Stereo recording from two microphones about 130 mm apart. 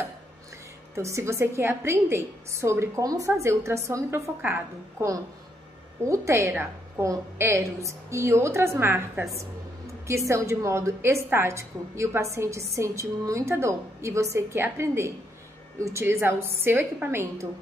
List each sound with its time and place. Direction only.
0.9 s a woman's voice: 20° right (ahead or behind)
6.0 s a woman's voice: 20° right (ahead or behind)